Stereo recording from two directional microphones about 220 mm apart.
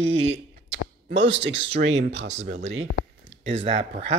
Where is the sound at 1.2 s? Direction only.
55° right (ahead or behind).